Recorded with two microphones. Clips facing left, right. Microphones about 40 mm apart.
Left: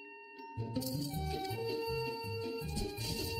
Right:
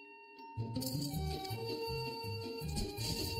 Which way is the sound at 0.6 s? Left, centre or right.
Centre.